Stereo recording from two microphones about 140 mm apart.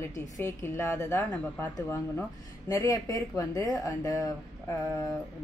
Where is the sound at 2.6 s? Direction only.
25° left (ahead or behind).